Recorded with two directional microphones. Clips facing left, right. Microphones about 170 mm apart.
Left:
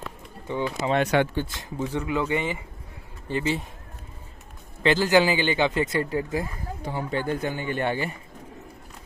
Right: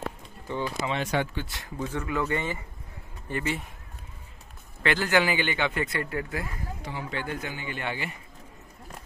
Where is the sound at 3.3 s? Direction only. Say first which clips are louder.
Left 4 dB; 25° left (ahead or behind).